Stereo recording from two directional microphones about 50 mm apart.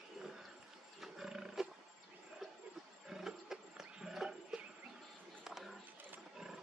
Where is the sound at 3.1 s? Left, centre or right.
Centre.